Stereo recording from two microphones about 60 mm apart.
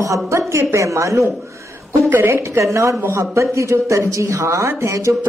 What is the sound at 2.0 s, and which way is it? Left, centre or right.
A woman's voice, right.